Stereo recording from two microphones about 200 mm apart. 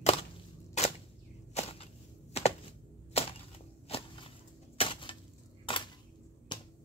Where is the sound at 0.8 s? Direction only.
35° left (ahead or behind).